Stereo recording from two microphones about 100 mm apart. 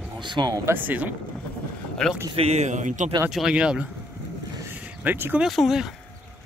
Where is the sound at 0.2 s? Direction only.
50° right (ahead or behind).